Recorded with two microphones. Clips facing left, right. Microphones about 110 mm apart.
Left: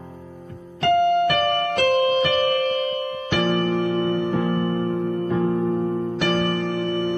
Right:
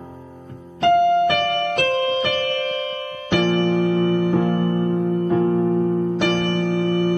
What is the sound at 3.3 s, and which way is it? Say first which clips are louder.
Electric piano: right 3 dB; 20° right (ahead or behind).